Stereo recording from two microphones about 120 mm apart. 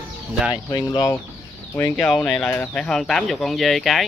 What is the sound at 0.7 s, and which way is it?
Speech, 30° left (ahead or behind).